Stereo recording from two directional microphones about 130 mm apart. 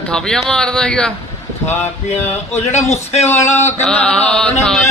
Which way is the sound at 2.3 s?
60° left (ahead or behind).